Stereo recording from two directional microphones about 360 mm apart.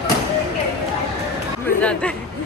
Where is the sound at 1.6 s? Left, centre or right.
Centre.